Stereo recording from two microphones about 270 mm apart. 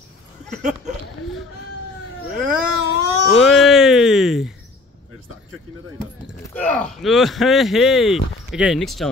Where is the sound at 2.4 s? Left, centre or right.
Right.